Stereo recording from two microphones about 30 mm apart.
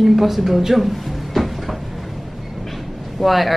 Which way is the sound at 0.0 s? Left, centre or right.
Centre.